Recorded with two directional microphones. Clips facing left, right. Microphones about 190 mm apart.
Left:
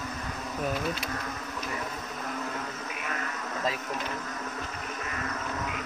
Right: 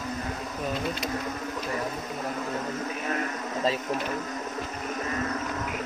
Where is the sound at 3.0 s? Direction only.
30° right (ahead or behind).